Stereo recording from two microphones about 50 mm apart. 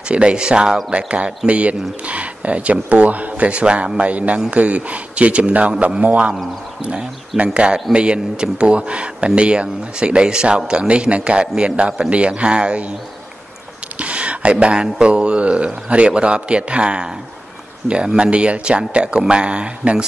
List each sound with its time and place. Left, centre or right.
0.1 s speech: right
13.9 s speech: right